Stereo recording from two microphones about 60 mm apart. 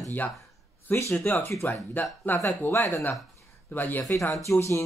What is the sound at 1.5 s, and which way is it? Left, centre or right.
Speech, left.